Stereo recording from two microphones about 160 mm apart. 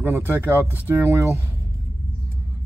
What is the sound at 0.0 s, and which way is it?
Speech, 15° right (ahead or behind).